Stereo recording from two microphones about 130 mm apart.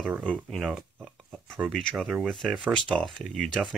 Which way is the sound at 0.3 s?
Centre (ahead or behind).